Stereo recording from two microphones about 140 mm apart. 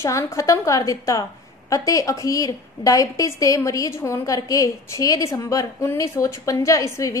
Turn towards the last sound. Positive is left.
turn(degrees=25)  # may be behind; listen again after turning